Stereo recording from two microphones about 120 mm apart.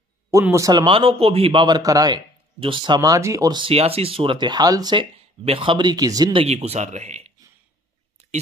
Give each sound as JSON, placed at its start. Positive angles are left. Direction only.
{"t": 0.3, "sound": "speech", "side_deg": -25}
{"t": 0.8, "sound": "a man's voice", "side_deg": -50}
{"t": 2.6, "sound": "speech", "side_deg": -45}
{"t": 3.6, "sound": "a man's voice", "side_deg": -55}
{"t": 4.5, "sound": "speech", "side_deg": -30}
{"t": 4.9, "sound": "speech", "side_deg": -50}
{"t": 6.3, "sound": "speech", "side_deg": -60}